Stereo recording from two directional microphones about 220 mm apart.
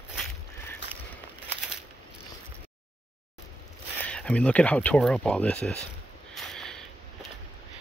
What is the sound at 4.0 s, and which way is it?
Speech, 5° left (ahead or behind).